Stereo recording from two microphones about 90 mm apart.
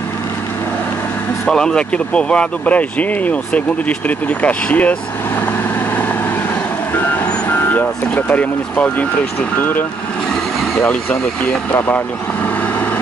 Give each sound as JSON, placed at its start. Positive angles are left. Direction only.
{"t": 1.4, "sound": "speech", "side_deg": 10}
{"t": 7.1, "sound": "speech", "side_deg": 20}
{"t": 10.8, "sound": "speech", "side_deg": 15}